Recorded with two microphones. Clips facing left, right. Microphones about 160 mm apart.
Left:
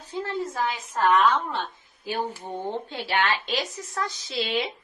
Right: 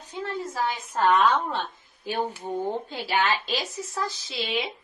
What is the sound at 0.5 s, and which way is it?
Speech, centre (ahead or behind).